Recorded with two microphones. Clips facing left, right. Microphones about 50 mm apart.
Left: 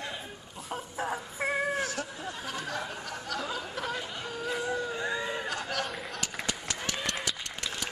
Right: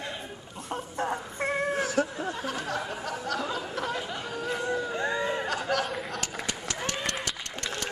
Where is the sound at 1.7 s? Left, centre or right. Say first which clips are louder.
Right 6 dB; right.